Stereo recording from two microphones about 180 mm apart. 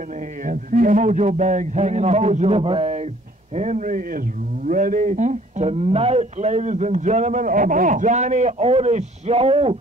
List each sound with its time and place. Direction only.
0.5 s a man's voice: 50° right (ahead or behind); by 9.8 s 35° right (ahead or behind)